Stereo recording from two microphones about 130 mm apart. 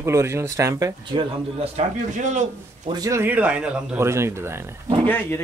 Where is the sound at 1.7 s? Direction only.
65° right (ahead or behind).